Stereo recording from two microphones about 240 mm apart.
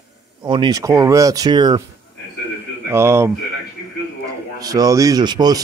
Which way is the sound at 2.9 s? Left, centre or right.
Centre.